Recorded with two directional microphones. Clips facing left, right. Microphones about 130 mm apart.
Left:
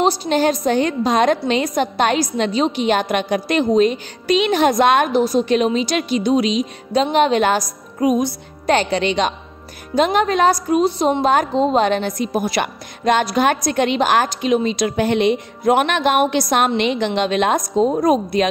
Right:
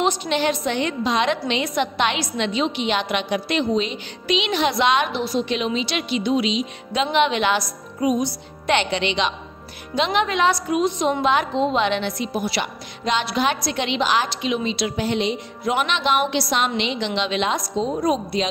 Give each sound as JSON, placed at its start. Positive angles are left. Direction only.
{"t": 0.0, "sound": "a woman's voice", "side_deg": 35}